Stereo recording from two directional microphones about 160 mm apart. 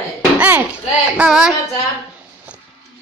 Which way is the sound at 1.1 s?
5° right (ahead or behind).